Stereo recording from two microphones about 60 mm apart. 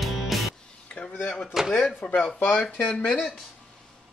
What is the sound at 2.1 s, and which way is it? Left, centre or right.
Speech, left.